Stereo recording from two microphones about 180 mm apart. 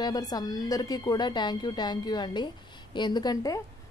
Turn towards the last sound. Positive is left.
turn(degrees=20)  # may be behind; listen again after turning